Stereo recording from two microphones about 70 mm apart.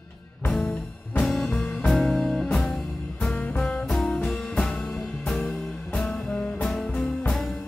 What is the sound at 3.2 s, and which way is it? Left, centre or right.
Music, centre.